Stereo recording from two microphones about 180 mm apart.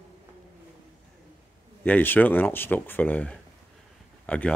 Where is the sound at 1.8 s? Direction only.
10° left (ahead or behind).